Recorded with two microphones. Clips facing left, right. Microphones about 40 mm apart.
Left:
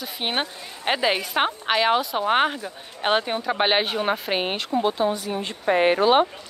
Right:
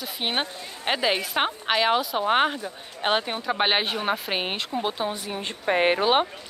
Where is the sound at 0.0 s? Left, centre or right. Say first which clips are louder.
Left 1 dB; centre.